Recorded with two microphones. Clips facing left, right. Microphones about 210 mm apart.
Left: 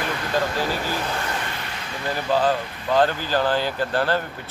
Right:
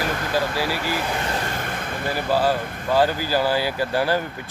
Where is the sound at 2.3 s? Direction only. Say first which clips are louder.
Even; 10° right (ahead or behind).